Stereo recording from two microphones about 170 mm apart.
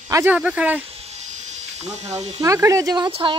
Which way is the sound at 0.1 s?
10° right (ahead or behind).